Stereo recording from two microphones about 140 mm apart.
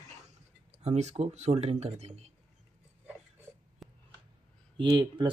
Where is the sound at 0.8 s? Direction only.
50° right (ahead or behind).